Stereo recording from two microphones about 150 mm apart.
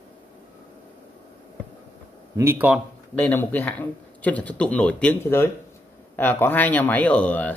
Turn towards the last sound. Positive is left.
turn(degrees=10)  # may be behind; listen again after turning